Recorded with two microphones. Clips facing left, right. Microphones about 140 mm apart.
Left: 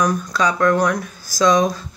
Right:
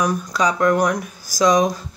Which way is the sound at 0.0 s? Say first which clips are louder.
Left 1 dB; 10° right (ahead or behind).